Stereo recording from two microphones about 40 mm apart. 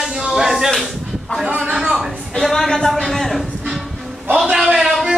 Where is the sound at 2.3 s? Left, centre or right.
Centre.